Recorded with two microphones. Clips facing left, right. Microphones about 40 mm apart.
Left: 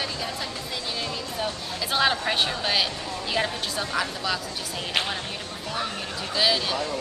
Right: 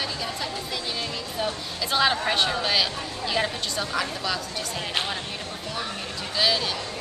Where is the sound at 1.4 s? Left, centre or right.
Centre.